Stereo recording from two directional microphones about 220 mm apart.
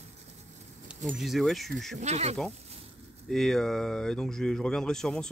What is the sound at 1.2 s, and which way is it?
Speech, centre (ahead or behind).